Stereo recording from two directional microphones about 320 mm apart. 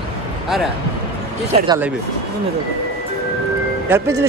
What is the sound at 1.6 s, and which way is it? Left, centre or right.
Speech, centre.